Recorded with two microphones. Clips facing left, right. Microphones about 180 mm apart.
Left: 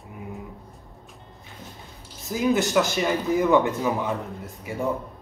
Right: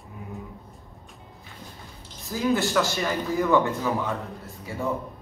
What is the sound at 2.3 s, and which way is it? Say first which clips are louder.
Speech: left 2 dB; 20° left (ahead or behind).